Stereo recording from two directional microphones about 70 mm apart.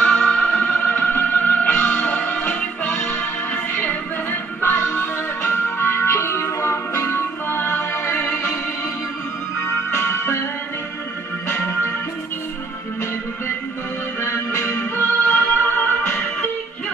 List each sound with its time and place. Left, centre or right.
0.0 s music: centre
4.8 s music: left
8.1 s music: left
9.9 s music: left
11.5 s music: left
14.2 s music: left